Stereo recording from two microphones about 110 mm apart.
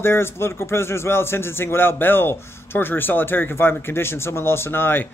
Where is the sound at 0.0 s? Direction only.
20° left (ahead or behind).